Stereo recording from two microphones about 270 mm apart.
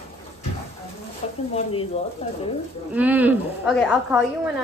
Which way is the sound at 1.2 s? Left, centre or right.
Left.